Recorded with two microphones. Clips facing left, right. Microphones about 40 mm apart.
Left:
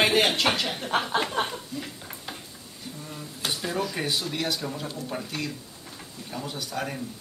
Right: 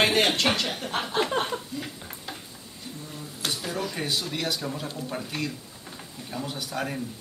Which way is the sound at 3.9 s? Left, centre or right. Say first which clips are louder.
Left 1 dB; centre.